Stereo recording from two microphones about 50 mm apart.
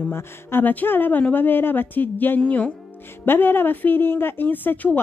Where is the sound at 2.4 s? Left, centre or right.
Left.